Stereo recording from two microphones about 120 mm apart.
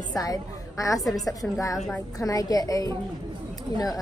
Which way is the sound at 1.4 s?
30° left (ahead or behind).